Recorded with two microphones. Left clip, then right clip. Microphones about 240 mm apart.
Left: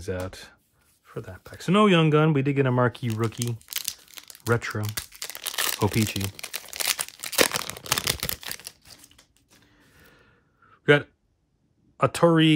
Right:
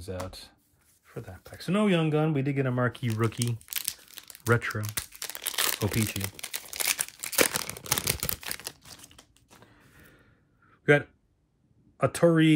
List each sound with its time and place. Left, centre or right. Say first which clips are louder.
0.0 s speech: left 5 dB; left
3.1 s crumpling: left 1 dB; centre
4.6 s speech: left 1 dB; centre
4.8 s crumpling: left 2 dB; centre
6.7 s crumpling: left 2 dB; centre
7.5 s a sound: left 3 dB; centre
8.0 s camera: left 4 dB; centre
8.6 s crumpling: right 2 dB; right
12.0 s speech: left 3 dB; centre